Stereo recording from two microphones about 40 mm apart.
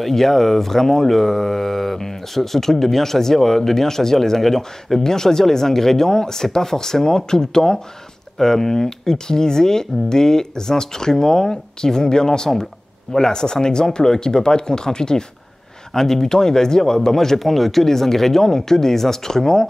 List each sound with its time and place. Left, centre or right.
0.0 s speech: centre